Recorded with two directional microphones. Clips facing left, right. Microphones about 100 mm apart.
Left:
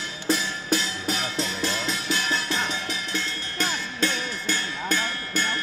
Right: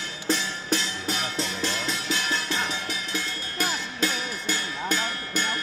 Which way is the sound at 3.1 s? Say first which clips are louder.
Left 1 dB; 10° right (ahead or behind).